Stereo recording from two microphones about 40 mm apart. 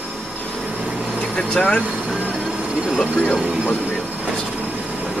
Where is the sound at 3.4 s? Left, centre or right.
Right.